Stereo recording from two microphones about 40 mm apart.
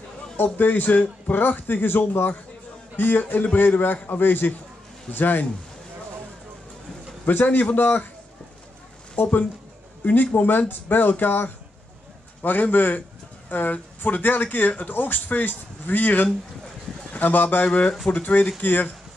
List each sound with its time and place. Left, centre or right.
0.4 s a man's voice: left
7.2 s a man's voice: left
9.1 s speech: left
10.3 s a man's voice: left
17.6 s speech: left
18.2 s speech: left
18.6 s a man's voice: left